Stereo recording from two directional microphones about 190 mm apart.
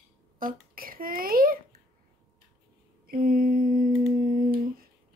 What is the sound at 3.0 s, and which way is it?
Humming, 50° right (ahead or behind).